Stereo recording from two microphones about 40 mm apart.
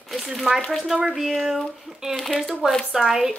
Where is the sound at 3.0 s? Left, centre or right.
Centre.